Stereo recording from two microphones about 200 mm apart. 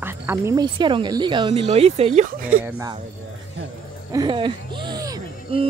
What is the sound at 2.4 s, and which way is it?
Speech, 10° right (ahead or behind).